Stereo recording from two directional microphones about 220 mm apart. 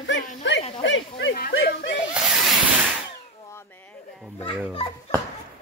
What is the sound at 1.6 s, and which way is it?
Snicker, 50° left (ahead or behind).